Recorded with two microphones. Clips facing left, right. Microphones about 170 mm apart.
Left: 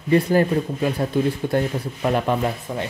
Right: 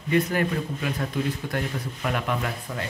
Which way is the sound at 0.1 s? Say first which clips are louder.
Left 6 dB; 35° left (ahead or behind).